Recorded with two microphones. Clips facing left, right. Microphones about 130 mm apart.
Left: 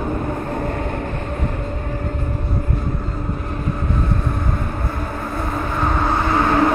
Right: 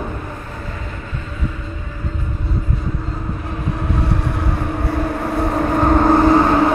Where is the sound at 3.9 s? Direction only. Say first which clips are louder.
Right 1 dB; 80° right; by 6.5 s 35° right (ahead or behind).